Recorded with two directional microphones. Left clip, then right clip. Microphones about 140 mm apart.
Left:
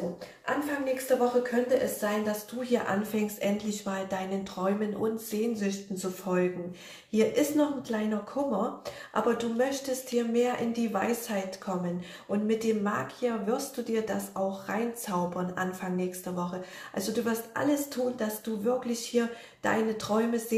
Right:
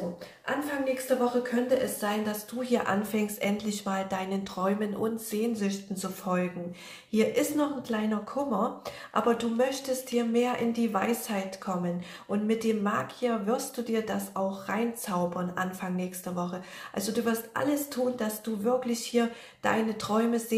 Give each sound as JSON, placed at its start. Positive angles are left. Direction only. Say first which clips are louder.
{"t": 0.5, "sound": "a woman's voice", "louder": "even", "side_deg": -10}
{"t": 2.6, "sound": "speech", "louder": "right 1 dB", "side_deg": -25}